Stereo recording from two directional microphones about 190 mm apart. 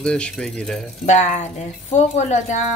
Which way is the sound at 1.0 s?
40° left (ahead or behind).